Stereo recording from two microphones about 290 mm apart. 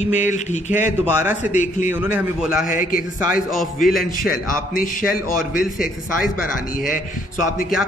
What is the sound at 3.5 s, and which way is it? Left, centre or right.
Speech, centre.